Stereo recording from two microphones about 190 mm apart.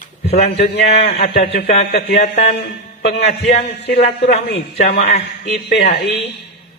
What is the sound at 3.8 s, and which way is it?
A man's voice, 60° left (ahead or behind).